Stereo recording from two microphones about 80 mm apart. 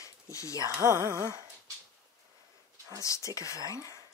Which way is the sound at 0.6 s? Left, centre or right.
Right.